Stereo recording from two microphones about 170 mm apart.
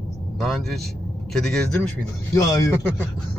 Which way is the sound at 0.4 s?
Centre (ahead or behind).